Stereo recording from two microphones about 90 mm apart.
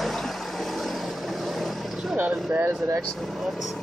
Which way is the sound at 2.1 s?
20° right (ahead or behind).